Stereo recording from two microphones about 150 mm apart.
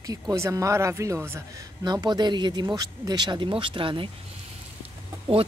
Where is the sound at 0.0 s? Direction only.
25° right (ahead or behind).